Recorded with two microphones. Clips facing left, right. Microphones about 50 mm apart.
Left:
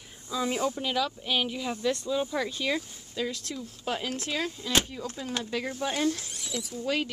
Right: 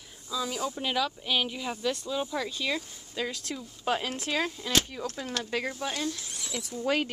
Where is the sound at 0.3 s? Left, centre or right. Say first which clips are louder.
Left 3 dB; left.